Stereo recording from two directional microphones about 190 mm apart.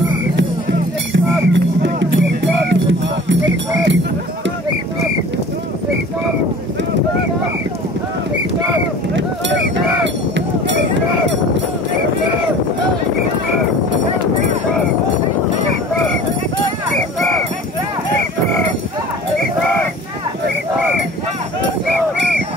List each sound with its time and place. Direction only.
1.5 s music: 75° right (ahead or behind)
10.3 s run: 70° right (ahead or behind)